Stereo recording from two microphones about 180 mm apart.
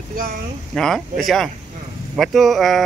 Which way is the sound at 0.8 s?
Centre (ahead or behind).